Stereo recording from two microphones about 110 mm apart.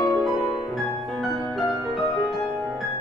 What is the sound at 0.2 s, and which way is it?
Music, centre (ahead or behind).